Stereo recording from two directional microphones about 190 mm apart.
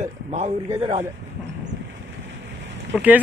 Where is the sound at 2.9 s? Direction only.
10° right (ahead or behind).